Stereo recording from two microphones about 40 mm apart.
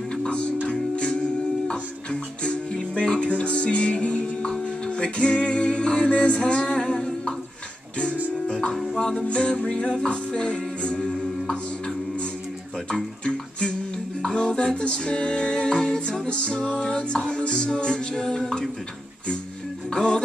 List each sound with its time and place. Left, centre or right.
0.1 s music: left
6.8 s humming: centre
8.5 s music: left
8.9 s music: centre
9.2 s music: left
13.2 s music: left
18.1 s music: centre
19.9 s music: centre